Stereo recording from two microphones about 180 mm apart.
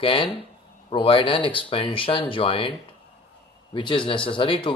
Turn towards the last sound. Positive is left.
turn(degrees=30)  # may be behind; listen again after turning